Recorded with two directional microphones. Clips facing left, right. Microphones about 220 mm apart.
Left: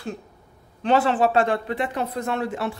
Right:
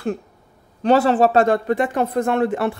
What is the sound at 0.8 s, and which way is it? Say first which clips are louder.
A woman's voice: right 5 dB; 40° right (ahead or behind).